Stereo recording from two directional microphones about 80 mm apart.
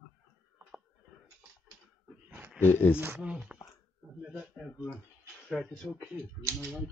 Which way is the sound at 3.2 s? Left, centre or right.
Centre.